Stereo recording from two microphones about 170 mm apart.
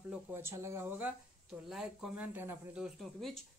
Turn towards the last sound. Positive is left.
turn(degrees=0)  # may be behind; listen again after turning